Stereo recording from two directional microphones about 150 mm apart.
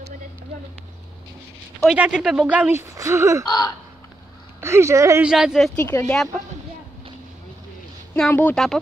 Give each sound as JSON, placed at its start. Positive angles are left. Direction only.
{"t": 1.9, "sound": "speech", "side_deg": -5}
{"t": 3.4, "sound": "speech", "side_deg": 25}
{"t": 4.6, "sound": "speech", "side_deg": -15}
{"t": 5.2, "sound": "speech", "side_deg": -5}
{"t": 5.8, "sound": "speech", "side_deg": 15}
{"t": 8.1, "sound": "speech", "side_deg": 10}